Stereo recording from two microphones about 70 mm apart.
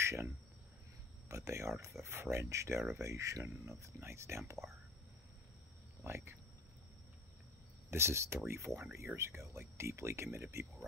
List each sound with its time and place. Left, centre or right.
0.0 s speech: right
1.3 s speech: right
6.0 s speech: right
7.9 s speech: right